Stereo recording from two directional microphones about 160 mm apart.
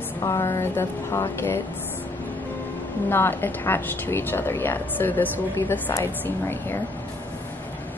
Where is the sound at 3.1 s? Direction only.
15° left (ahead or behind).